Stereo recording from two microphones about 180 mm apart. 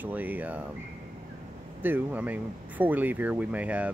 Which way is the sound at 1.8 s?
10° right (ahead or behind).